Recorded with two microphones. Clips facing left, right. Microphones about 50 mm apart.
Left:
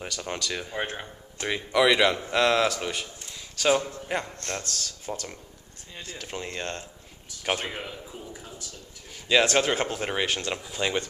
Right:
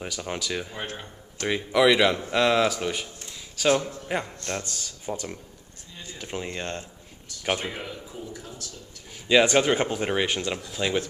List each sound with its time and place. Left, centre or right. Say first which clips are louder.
0.0 s a man's voice: right 1 dB; centre
0.7 s speech: left 3 dB; centre
1.5 s a man's voice: right 2 dB; centre
9.3 s speech: right 3 dB; centre
10.5 s a man's voice: right 1 dB; centre